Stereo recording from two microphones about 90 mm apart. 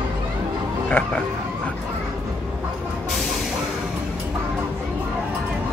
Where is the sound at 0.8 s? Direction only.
20° left (ahead or behind).